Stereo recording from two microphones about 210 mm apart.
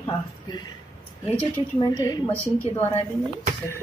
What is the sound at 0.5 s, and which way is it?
Speech, 20° left (ahead or behind).